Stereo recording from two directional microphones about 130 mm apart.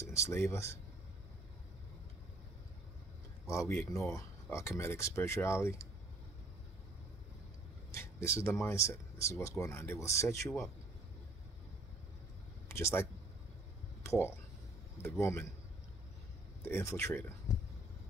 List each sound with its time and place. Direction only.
0.0 s a sound: 20° left (ahead or behind)
0.5 s speech: 20° left (ahead or behind)
3.4 s speech: 20° left (ahead or behind)
7.9 s speech: 20° left (ahead or behind)
12.6 s speech: 20° left (ahead or behind)
14.0 s speech: 20° left (ahead or behind)
16.6 s speech: 20° left (ahead or behind)